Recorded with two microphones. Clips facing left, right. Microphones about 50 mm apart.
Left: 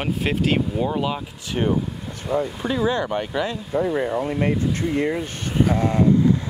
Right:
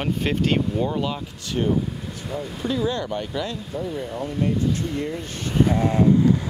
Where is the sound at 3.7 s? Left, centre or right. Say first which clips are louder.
Left 11 dB; left.